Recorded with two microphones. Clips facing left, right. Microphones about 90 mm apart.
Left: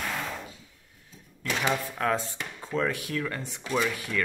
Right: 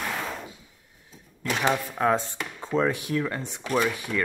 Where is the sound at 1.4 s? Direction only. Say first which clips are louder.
Right 3 dB; 30° right (ahead or behind).